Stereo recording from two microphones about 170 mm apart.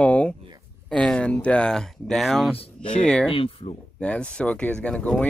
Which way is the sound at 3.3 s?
35° left (ahead or behind).